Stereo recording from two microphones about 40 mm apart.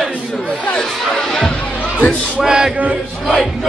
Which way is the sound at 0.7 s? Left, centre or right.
Centre.